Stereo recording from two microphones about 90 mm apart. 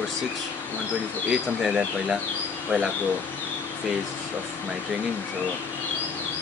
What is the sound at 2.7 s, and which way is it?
Speech, 15° right (ahead or behind).